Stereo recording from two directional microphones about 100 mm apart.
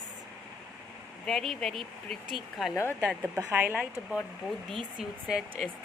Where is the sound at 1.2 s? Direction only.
5° left (ahead or behind).